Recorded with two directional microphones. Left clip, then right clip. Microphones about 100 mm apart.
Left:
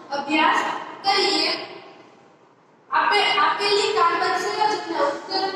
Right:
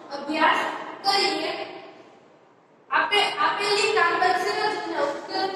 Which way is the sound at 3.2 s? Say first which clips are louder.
Left 3 dB; 30° left (ahead or behind).